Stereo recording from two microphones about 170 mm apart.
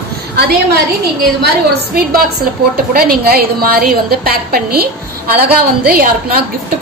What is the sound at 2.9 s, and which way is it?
A woman's voice, 65° right (ahead or behind).